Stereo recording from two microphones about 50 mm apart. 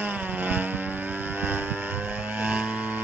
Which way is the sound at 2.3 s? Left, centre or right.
Right.